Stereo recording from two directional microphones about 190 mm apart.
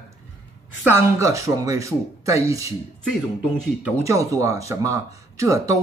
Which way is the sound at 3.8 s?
10° right (ahead or behind).